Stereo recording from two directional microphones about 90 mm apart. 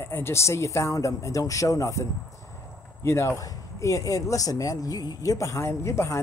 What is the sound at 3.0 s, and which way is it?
A man's voice, 30° left (ahead or behind).